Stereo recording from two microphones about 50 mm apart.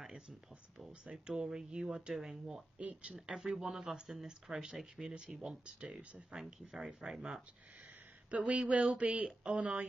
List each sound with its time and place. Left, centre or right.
1.0 s speech: centre
2.8 s speech: right
3.3 s speech: centre
5.1 s speech: centre
8.3 s speech: right